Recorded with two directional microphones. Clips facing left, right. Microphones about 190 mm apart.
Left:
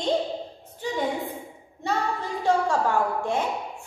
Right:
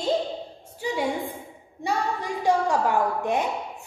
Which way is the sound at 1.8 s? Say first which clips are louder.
Even; 15° right (ahead or behind).